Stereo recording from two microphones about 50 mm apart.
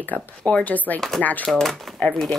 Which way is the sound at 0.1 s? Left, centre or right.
Left.